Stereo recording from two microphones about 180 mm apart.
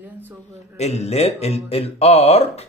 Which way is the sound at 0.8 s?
35° left (ahead or behind).